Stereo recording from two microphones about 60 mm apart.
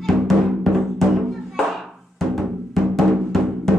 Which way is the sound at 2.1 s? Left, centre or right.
Centre.